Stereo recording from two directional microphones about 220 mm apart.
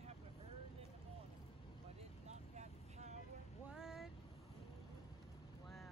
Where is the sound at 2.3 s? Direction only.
30° right (ahead or behind).